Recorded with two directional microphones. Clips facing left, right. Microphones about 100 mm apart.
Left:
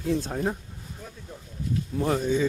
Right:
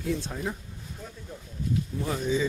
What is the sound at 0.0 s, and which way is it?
Speech, 40° left (ahead or behind).